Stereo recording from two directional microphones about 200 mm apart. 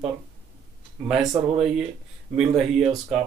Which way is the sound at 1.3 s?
25° right (ahead or behind).